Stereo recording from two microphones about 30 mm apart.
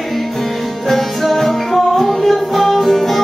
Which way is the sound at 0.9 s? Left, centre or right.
Centre.